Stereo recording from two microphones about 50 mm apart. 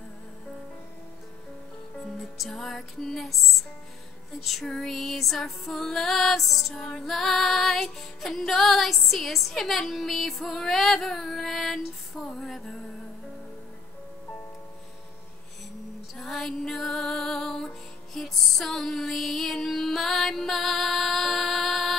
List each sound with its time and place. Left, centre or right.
2.1 s music: centre
4.6 s music: centre
6.7 s music: centre
7.1 s music: centre
16.2 s music: centre